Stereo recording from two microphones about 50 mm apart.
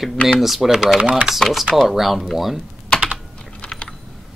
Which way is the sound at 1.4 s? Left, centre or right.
Centre.